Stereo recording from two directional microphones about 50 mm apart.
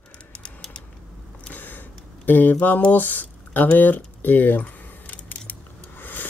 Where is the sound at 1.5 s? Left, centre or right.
Left.